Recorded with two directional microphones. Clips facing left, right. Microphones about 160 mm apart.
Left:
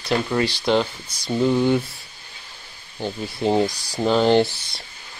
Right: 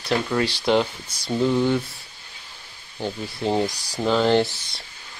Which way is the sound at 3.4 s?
15° left (ahead or behind).